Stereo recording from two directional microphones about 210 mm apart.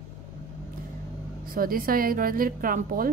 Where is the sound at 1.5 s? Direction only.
45° right (ahead or behind).